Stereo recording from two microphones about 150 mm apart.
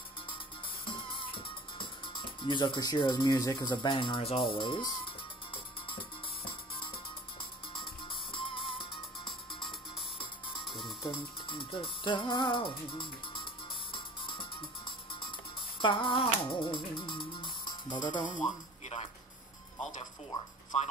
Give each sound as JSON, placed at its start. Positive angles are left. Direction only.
{"t": 0.8, "sound": "music", "side_deg": 35}
{"t": 11.0, "sound": "speech", "side_deg": 35}
{"t": 13.9, "sound": "music", "side_deg": 35}
{"t": 20.7, "sound": "a man's voice", "side_deg": 45}